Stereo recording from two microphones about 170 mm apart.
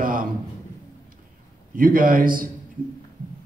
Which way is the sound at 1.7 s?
55° right (ahead or behind).